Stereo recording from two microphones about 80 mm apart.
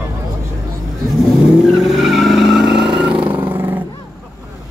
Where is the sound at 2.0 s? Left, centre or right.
Centre.